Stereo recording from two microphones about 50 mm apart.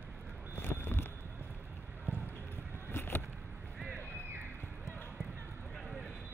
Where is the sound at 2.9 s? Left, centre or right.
Left.